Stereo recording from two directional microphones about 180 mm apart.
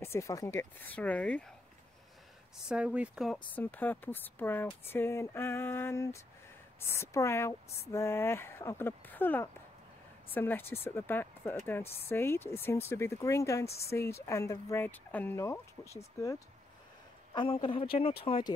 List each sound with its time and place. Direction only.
0.0 s a woman's voice: 15° left (ahead or behind)
2.7 s speech: 5° right (ahead or behind)
3.5 s a woman's voice: 10° left (ahead or behind)
17.3 s a woman's voice: 30° left (ahead or behind)